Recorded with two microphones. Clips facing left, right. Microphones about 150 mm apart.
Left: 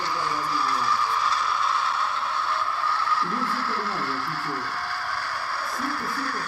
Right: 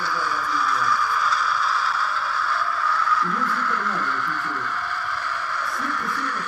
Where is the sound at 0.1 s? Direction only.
30° left (ahead or behind).